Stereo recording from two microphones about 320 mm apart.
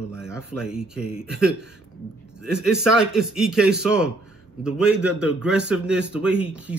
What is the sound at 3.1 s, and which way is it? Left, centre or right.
Speech, centre.